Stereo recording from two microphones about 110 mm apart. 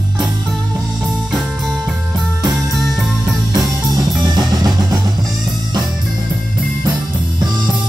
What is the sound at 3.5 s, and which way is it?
Music, 35° right (ahead or behind).